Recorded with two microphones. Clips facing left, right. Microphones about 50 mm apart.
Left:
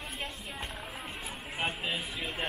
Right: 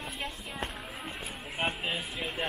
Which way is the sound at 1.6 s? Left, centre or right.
Right.